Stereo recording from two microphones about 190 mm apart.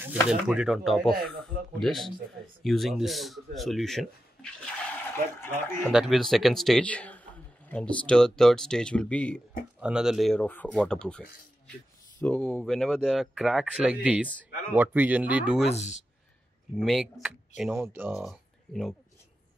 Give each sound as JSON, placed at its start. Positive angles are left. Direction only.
{"t": 0.3, "sound": "speech", "side_deg": -5}
{"t": 5.4, "sound": "speech", "side_deg": 10}
{"t": 5.9, "sound": "speech", "side_deg": 0}
{"t": 9.8, "sound": "speech", "side_deg": -5}
{"t": 15.7, "sound": "speech", "side_deg": 35}
{"t": 16.7, "sound": "speech", "side_deg": 0}